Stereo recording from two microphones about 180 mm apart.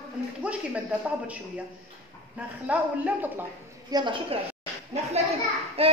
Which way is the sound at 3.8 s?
25° right (ahead or behind).